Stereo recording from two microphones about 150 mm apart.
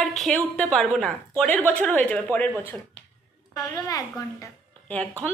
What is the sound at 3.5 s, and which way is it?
Speech, 25° left (ahead or behind).